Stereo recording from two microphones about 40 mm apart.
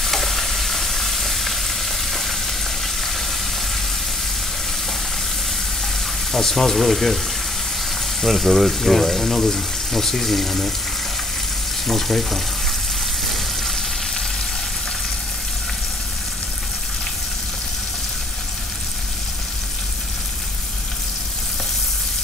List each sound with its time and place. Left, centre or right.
0.0 s frying: centre
6.3 s speech: centre
8.2 s speech: centre
11.8 s speech: centre